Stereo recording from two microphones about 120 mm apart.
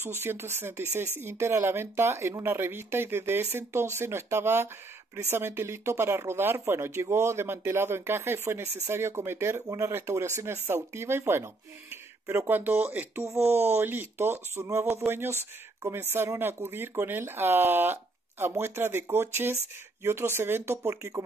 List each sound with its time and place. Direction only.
0.0 s speech: 20° right (ahead or behind)